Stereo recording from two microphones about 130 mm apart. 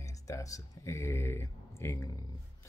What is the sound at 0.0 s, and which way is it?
Speech, 25° left (ahead or behind).